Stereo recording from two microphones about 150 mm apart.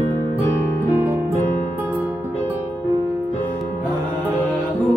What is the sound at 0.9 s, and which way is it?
Music, 15° right (ahead or behind).